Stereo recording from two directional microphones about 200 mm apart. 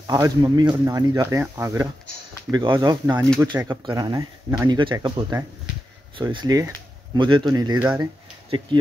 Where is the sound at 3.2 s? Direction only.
5° left (ahead or behind).